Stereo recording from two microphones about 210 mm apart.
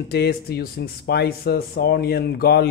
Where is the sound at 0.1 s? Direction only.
50° left (ahead or behind).